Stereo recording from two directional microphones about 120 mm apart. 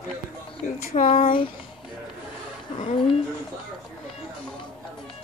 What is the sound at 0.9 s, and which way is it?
Speech, 55° left (ahead or behind).